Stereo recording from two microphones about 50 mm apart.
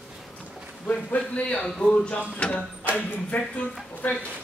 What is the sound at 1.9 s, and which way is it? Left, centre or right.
Speech, left.